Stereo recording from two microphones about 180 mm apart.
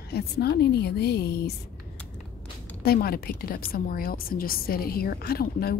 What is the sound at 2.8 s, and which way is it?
A woman's voice, 60° left (ahead or behind).